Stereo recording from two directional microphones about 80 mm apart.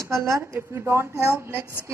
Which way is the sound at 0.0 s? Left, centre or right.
Right.